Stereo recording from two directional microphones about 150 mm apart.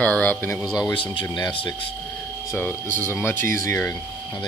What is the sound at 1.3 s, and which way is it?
Speech, 30° left (ahead or behind).